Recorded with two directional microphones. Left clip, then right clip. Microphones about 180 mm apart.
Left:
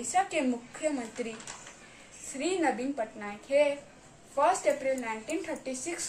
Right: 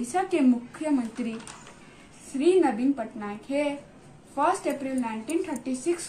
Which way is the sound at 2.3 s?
25° left (ahead or behind).